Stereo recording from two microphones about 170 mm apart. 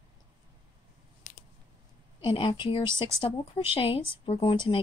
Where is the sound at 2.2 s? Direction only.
25° left (ahead or behind).